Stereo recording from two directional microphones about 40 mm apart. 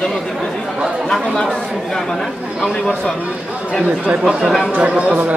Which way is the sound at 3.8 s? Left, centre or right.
Right.